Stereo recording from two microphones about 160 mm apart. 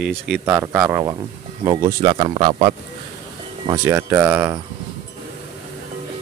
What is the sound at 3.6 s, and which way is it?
Speech, 20° right (ahead or behind).